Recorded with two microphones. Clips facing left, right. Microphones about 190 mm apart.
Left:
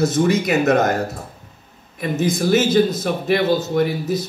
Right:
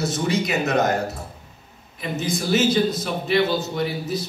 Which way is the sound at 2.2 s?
50° left (ahead or behind).